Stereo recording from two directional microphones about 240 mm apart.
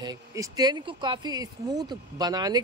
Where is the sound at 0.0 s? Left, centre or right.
Centre.